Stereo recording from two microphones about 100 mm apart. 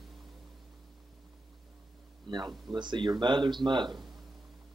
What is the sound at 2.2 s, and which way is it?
Speech, 50° right (ahead or behind).